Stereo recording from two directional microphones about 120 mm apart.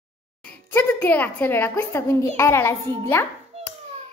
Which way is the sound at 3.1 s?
20° left (ahead or behind).